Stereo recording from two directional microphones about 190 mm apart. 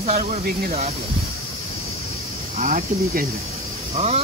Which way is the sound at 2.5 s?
45° right (ahead or behind).